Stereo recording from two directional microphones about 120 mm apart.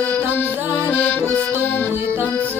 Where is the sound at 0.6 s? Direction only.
20° right (ahead or behind).